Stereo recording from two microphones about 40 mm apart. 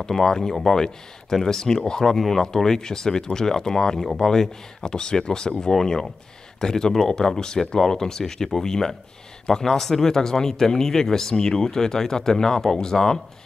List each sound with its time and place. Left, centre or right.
0.1 s speech: centre
2.1 s speech: centre